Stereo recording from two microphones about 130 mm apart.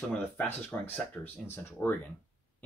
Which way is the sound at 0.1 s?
10° left (ahead or behind).